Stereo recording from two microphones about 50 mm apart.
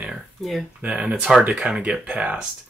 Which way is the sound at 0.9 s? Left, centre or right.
Centre.